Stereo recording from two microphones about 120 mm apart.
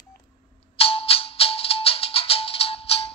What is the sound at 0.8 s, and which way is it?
Music, 55° left (ahead or behind).